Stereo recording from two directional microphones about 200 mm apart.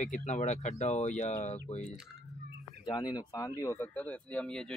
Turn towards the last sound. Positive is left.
turn(degrees=5)  # may be behind; listen again after turning